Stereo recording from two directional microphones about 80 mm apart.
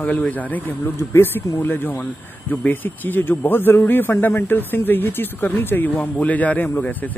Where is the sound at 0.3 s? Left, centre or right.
Left.